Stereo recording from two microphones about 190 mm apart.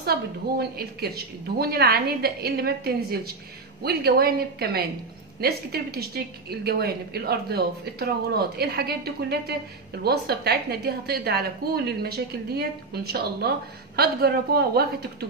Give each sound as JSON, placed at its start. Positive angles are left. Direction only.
{"t": 0.6, "sound": "a woman's voice", "side_deg": -55}